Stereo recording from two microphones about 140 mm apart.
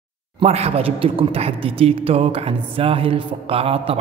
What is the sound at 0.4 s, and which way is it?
A man's voice, 45° right (ahead or behind).